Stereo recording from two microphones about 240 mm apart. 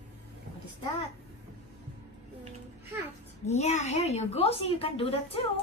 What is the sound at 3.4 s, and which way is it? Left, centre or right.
A woman's voice, left.